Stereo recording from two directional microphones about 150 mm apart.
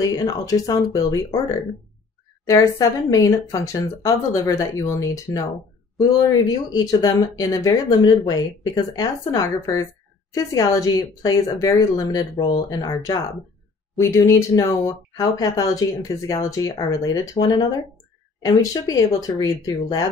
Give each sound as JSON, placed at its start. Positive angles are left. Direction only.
{"t": 0.0, "sound": "speech", "side_deg": 25}
{"t": 2.4, "sound": "speech", "side_deg": 20}